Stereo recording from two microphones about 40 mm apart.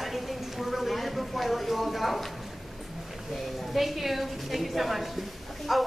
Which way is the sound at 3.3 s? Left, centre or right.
Centre.